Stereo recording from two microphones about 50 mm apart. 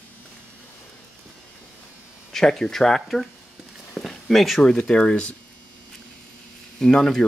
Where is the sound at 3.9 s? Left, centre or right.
Centre.